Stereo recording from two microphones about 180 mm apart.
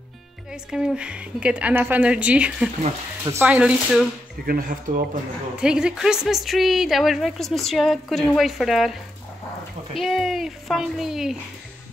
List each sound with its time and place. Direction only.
0.5 s a woman's voice: 5° right (ahead or behind)
4.5 s speech: 55° right (ahead or behind)
5.6 s speech: 5° right (ahead or behind)
9.9 s speech: centre (ahead or behind)